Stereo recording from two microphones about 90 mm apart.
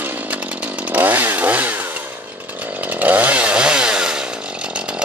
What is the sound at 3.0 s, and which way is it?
Chainsaw, 20° right (ahead or behind).